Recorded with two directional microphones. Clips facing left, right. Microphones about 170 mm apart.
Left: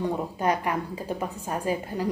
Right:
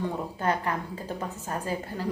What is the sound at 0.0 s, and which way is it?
Speech, 15° left (ahead or behind).